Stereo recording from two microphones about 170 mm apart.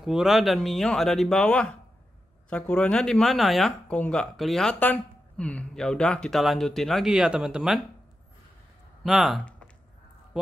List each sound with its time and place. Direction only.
0.0 s speech: centre (ahead or behind)
9.0 s speech: centre (ahead or behind)